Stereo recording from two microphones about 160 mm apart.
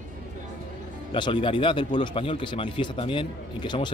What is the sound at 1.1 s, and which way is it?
Speech, 30° left (ahead or behind).